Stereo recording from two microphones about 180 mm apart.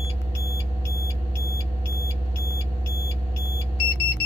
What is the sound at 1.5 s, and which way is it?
Vehicle, 15° right (ahead or behind).